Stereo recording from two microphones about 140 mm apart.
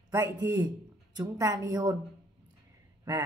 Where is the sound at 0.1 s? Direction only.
25° right (ahead or behind).